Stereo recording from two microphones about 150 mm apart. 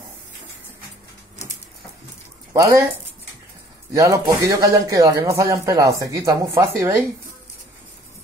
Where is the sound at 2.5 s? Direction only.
20° right (ahead or behind).